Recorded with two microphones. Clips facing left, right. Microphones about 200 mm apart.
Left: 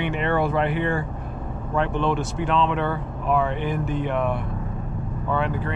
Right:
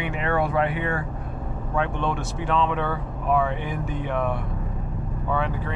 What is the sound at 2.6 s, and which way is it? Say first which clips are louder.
Speech: left 1 dB; centre (ahead or behind).